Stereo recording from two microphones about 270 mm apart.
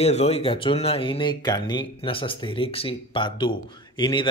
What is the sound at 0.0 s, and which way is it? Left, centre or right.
Speech, left.